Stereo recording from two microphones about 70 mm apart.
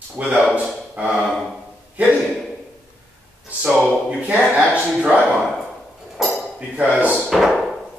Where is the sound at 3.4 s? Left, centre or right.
Right.